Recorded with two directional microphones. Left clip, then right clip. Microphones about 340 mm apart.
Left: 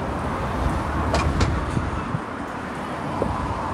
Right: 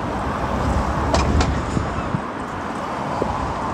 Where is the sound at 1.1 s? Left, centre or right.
Right.